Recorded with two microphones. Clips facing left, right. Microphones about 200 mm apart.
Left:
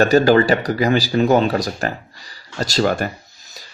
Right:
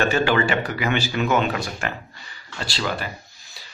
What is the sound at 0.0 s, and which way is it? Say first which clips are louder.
Speech: left 7 dB; 40° left (ahead or behind).